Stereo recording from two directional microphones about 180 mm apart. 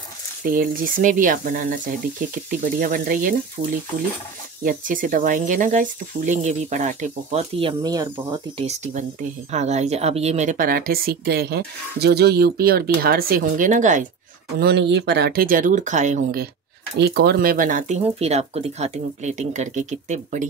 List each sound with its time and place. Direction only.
0.5 s speech: 50° right (ahead or behind)
4.6 s speech: 50° right (ahead or behind); by 8.1 s 20° right (ahead or behind)
8.5 s speech: 40° right (ahead or behind)
14.6 s speech: 70° right (ahead or behind); by 16.4 s 45° right (ahead or behind)
17.0 s speech: 65° right (ahead or behind); by 20.4 s 45° right (ahead or behind)